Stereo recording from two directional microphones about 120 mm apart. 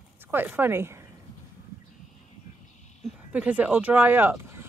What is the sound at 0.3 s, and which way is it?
Speech, 15° right (ahead or behind).